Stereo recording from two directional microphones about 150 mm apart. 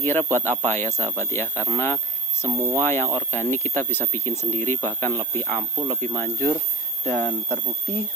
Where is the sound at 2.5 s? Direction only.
15° right (ahead or behind).